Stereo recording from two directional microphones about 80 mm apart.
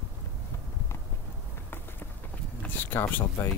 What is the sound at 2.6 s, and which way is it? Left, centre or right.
Speech, left.